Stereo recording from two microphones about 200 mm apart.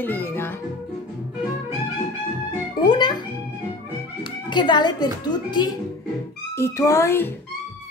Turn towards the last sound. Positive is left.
turn(degrees=10)  # may be behind; listen again after turning